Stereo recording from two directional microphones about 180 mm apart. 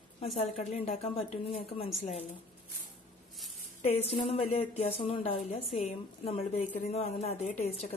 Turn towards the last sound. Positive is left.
turn(degrees=35)  # may be behind; listen again after turning